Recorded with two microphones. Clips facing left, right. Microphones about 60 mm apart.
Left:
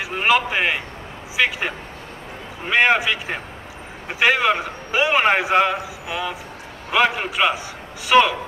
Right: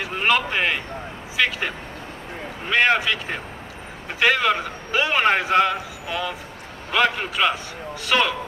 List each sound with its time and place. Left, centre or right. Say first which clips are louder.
0.0 s a man's voice: left 2 dB; centre